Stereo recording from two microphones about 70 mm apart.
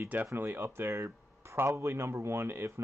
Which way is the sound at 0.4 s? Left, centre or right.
Right.